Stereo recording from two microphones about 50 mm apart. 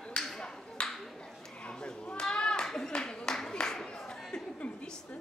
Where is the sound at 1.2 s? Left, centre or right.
Centre.